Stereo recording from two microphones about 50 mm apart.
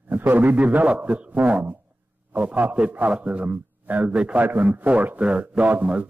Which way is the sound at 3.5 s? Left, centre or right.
Right.